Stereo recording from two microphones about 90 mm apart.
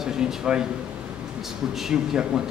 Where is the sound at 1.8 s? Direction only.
5° right (ahead or behind).